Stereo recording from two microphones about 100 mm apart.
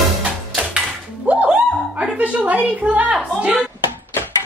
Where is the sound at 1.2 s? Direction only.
15° right (ahead or behind).